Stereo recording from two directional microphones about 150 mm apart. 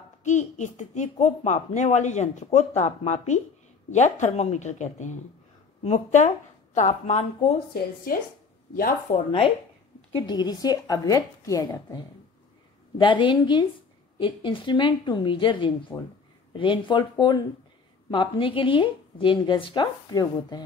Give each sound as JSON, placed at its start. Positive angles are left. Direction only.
{"t": 0.2, "sound": "speech", "side_deg": 50}
{"t": 7.7, "sound": "speech", "side_deg": 80}
{"t": 10.2, "sound": "a woman's voice", "side_deg": 30}
{"t": 13.0, "sound": "a woman's voice", "side_deg": 35}